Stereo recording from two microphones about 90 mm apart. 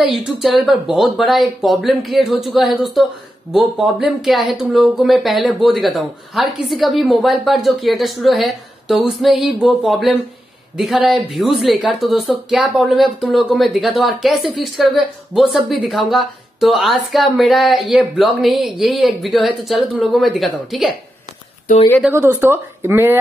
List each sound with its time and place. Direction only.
0.0 s speech: 5° right (ahead or behind)
22.1 s speech: 30° right (ahead or behind)